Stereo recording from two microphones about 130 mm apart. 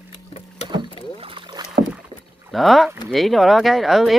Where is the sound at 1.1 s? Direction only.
45° right (ahead or behind).